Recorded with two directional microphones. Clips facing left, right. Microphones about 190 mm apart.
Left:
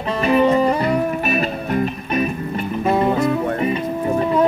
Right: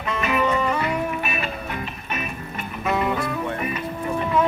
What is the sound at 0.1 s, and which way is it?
Music, 35° left (ahead or behind).